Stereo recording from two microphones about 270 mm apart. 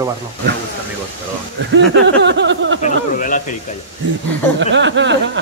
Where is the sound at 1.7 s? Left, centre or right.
Right.